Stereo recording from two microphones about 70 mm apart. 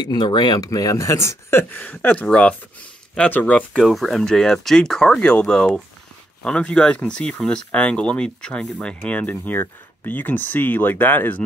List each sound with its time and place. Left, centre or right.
0.0 s speech: left
0.7 s speech: left
1.8 s speech: left
3.7 s speech: centre
5.2 s speech: centre